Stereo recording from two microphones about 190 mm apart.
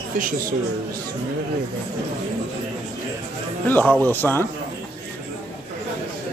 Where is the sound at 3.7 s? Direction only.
10° left (ahead or behind).